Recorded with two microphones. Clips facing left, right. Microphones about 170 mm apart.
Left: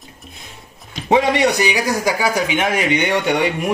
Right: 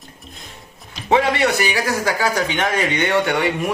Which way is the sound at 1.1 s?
15° left (ahead or behind).